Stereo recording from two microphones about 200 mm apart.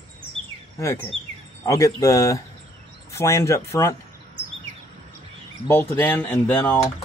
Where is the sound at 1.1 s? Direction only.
75° right (ahead or behind).